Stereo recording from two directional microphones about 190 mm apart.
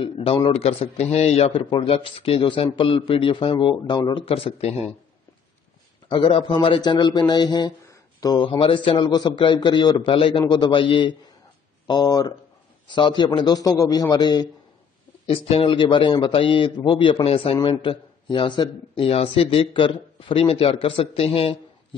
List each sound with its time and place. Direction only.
0.0 s a man's voice: 30° left (ahead or behind)
6.0 s a man's voice: 25° left (ahead or behind)